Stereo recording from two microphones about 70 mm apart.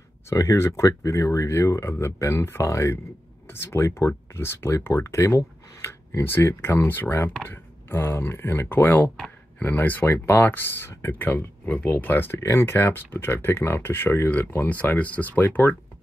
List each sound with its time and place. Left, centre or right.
0.3 s speech: left
3.4 s speech: left
6.9 s speech: left
9.1 s a sound: centre
9.7 s speech: left
12.4 s speech: left
14.7 s speech: left